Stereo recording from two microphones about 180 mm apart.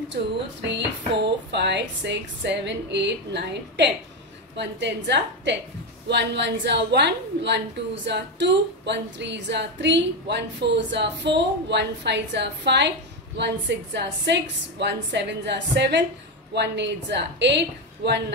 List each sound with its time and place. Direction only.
0.1 s a woman's voice: 75° right (ahead or behind)